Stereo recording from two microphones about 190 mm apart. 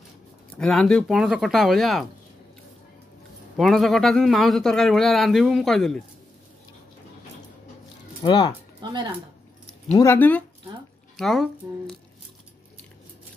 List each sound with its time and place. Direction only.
0.6 s a man's voice: 5° left (ahead or behind)
3.5 s a man's voice: centre (ahead or behind)
8.2 s speech: 25° left (ahead or behind)
8.8 s speech: 25° right (ahead or behind)
9.9 s a man's voice: 10° left (ahead or behind)